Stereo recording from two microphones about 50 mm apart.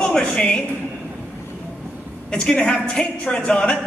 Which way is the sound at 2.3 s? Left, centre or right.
Centre.